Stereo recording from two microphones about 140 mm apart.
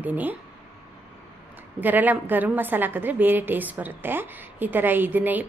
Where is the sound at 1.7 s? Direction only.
10° right (ahead or behind).